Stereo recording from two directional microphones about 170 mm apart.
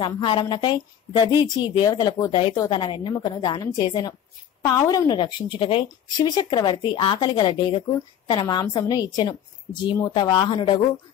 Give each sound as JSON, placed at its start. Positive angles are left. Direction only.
{"t": 0.0, "sound": "a woman's voice", "side_deg": 30}